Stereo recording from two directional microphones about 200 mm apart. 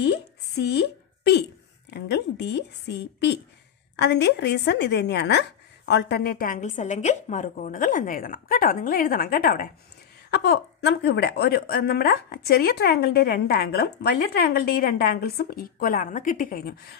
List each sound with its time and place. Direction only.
0.0 s a woman's voice: 55° left (ahead or behind)